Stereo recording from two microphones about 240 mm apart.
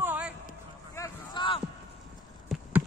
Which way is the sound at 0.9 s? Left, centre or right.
Centre.